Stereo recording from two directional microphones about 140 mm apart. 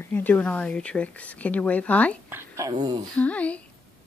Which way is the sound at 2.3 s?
20° right (ahead or behind).